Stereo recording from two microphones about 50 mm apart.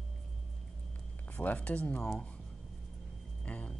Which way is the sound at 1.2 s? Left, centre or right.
Left.